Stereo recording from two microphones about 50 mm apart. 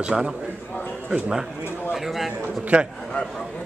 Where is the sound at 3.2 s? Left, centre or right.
Left.